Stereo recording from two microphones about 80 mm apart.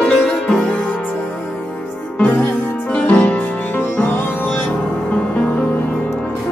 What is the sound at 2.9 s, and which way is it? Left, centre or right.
Music, centre.